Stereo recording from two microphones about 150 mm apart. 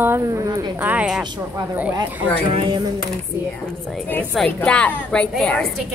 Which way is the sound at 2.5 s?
35° right (ahead or behind).